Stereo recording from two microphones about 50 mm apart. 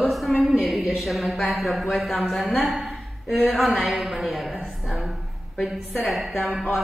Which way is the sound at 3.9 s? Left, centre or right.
Centre.